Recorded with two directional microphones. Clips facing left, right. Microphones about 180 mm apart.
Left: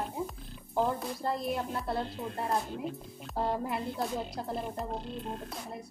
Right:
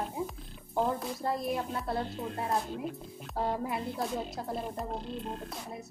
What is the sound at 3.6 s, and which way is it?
Speech, centre (ahead or behind).